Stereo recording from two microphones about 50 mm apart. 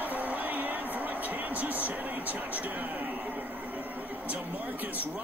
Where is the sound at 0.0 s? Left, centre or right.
Right.